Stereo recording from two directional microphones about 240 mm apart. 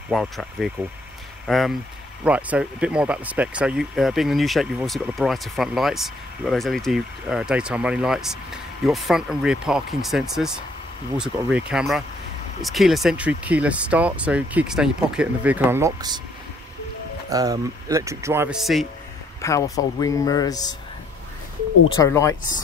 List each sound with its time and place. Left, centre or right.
0.1 s speech: centre
17.3 s speech: centre
19.4 s speech: centre
21.9 s speech: centre